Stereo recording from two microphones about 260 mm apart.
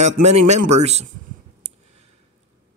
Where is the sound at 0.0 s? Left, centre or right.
Right.